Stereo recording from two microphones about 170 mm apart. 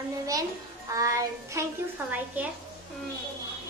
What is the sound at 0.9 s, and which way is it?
A woman's voice, 20° right (ahead or behind).